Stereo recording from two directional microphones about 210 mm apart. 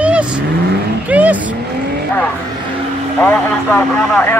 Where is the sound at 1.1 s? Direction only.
5° right (ahead or behind).